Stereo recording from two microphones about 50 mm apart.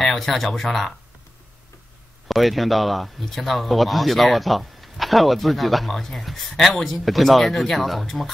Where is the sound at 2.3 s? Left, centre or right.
Centre.